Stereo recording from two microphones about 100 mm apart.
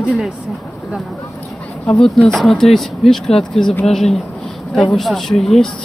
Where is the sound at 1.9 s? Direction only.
5° left (ahead or behind).